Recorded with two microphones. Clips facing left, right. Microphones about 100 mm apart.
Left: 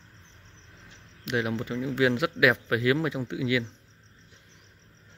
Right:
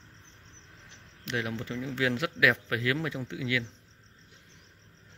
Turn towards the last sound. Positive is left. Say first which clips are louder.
# left 5 dB
turn(degrees=20)  # may be behind; listen again after turning